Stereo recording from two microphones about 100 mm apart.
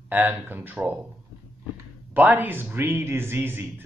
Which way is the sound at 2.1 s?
15° right (ahead or behind).